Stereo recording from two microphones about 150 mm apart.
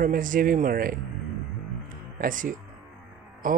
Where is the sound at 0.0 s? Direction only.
65° right (ahead or behind).